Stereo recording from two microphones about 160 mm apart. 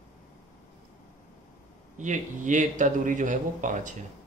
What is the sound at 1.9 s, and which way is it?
Speech, 50° right (ahead or behind).